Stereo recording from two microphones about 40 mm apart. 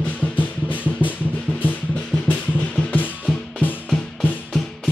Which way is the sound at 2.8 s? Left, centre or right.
Left.